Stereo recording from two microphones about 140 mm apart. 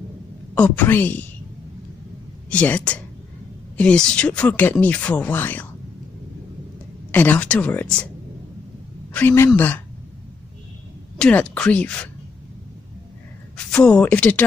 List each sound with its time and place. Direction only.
0.6 s speech: 10° left (ahead or behind)
2.5 s speech: 10° left (ahead or behind)
7.1 s speech: 10° left (ahead or behind)
9.1 s speech: 15° left (ahead or behind)
11.1 s speech: 5° left (ahead or behind)
13.7 s speech: 5° left (ahead or behind)